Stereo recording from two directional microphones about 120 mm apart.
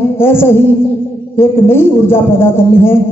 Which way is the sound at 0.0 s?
20° left (ahead or behind).